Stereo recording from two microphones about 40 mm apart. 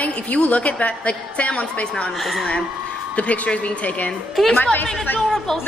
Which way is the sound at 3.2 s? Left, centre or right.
Left.